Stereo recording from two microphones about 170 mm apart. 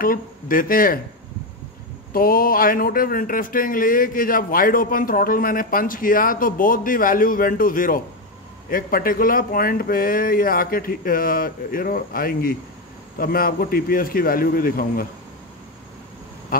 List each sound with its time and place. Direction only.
0.0 s speech: 55° left (ahead or behind)
2.1 s speech: 60° left (ahead or behind)